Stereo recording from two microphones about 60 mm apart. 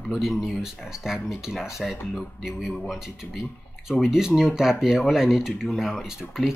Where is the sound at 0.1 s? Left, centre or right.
Centre.